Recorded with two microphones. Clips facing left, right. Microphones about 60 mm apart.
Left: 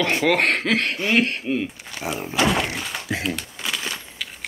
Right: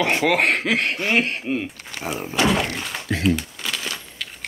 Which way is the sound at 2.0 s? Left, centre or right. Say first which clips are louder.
Even; centre.